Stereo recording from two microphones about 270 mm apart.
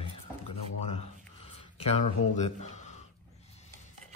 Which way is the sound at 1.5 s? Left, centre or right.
Left.